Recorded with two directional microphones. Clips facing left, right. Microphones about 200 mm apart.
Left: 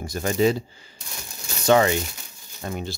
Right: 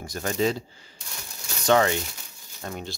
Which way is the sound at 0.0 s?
10° left (ahead or behind).